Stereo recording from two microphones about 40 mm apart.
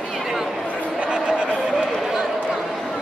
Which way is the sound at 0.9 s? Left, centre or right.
Right.